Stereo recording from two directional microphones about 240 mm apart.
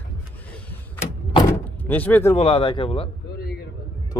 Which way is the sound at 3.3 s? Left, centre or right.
Left.